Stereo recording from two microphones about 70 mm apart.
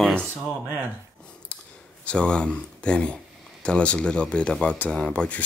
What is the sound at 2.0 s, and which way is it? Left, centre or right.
Speech, centre.